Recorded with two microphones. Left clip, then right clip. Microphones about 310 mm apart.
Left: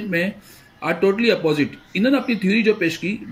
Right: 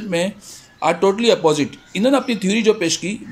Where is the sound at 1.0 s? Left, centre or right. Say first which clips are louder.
Right 2 dB; right.